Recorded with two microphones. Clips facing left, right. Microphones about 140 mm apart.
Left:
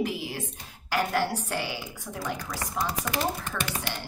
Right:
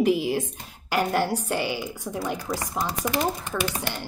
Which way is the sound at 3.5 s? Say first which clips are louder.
Right 6 dB; 20° right (ahead or behind).